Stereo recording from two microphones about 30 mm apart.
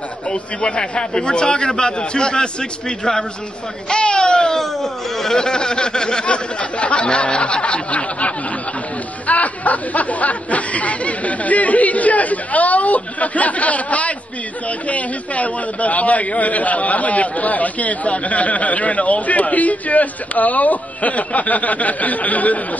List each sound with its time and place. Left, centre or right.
0.3 s a man's voice: left
3.9 s speech: left
5.4 s a sound: left
6.2 s a man's voice: left
9.3 s a man's voice: left